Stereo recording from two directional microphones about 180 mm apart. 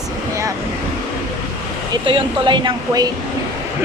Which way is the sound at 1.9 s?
25° right (ahead or behind).